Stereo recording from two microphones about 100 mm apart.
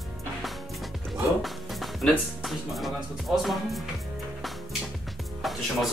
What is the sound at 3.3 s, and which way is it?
Speech, 5° right (ahead or behind).